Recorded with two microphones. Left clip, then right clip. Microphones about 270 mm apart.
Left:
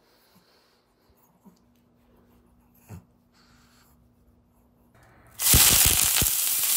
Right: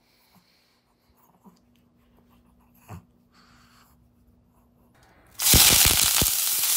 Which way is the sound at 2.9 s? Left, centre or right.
Centre.